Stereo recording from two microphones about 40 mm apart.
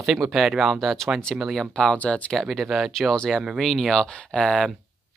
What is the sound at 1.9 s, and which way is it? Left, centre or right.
Speech, left.